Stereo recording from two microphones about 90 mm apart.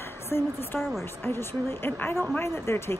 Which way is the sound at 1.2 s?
25° left (ahead or behind).